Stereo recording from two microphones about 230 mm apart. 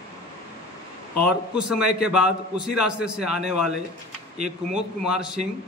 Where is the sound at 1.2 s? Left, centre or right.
Centre.